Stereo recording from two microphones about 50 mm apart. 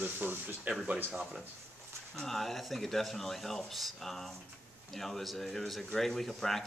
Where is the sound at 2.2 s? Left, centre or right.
Centre.